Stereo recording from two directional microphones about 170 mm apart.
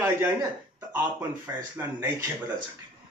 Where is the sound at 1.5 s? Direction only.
15° right (ahead or behind).